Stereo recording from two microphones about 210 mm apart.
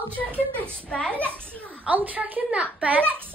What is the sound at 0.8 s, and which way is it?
A child's voice, 5° left (ahead or behind).